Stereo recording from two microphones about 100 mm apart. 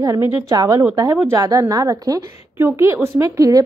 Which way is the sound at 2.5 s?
25° right (ahead or behind).